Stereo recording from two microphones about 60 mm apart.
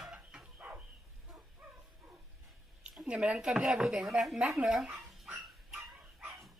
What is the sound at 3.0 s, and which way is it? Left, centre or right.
Speech, centre.